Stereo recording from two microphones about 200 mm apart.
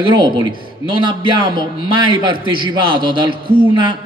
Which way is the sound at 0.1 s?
25° right (ahead or behind).